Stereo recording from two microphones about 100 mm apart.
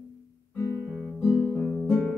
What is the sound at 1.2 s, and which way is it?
Guitar, 25° left (ahead or behind).